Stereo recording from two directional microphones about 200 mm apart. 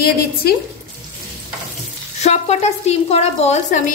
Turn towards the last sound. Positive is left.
turn(degrees=35)  # may be behind; listen again after turning